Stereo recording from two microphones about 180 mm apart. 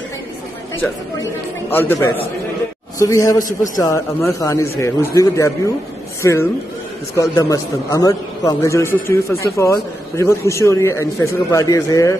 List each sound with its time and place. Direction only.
1.7 s a man's voice: 10° left (ahead or behind)